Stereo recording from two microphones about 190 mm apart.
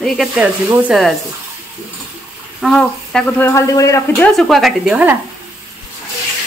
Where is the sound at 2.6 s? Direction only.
Centre (ahead or behind).